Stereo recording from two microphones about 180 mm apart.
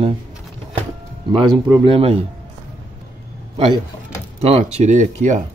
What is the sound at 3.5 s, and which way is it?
Speech, 30° right (ahead or behind).